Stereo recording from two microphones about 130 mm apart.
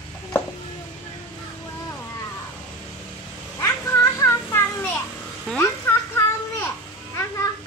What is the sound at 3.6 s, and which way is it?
Children playing, 25° left (ahead or behind).